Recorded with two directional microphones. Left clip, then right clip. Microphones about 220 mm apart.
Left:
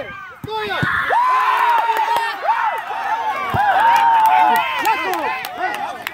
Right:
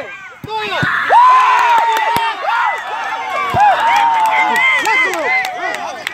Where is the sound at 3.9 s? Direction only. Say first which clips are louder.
Right 1 dB; 40° left (ahead or behind).